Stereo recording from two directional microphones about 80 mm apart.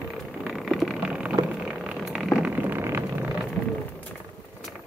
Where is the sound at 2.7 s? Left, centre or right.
Right.